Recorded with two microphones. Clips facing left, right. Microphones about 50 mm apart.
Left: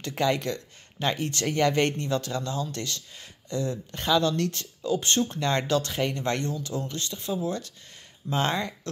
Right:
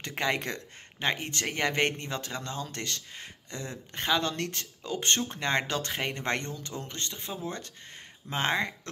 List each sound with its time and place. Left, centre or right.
0.0 s speech: right